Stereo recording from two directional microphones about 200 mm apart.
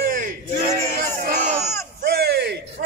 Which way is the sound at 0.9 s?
45° right (ahead or behind).